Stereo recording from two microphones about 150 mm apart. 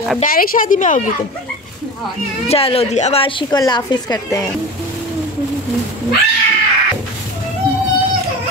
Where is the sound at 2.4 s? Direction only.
40° left (ahead or behind); by 4.5 s 25° left (ahead or behind).